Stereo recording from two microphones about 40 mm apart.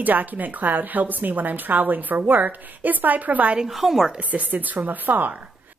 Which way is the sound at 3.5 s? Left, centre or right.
Centre.